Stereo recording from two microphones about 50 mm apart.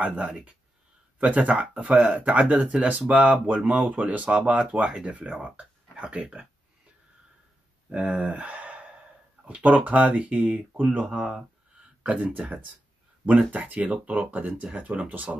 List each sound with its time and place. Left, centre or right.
0.0 s speech: right
7.9 s speech: right
11.1 s speech: centre
12.0 s speech: right